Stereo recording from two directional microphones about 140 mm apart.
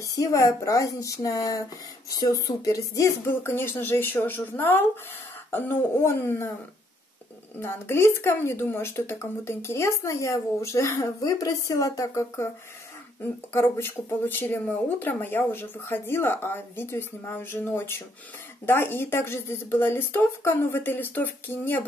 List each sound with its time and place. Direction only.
0.0 s speech: 25° left (ahead or behind)
7.6 s speech: 15° left (ahead or behind)